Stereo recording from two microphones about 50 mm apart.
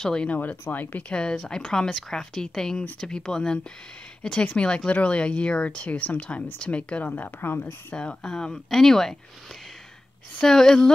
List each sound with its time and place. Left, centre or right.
0.0 s speech: centre
0.3 s speech: left
1.1 s speech: centre; by 7.6 s left
7.9 s speech: centre
10.4 s speech: centre